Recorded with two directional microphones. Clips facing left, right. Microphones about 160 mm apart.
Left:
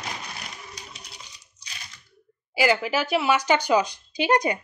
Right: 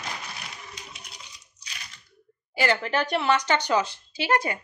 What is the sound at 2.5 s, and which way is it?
Speech, 10° left (ahead or behind).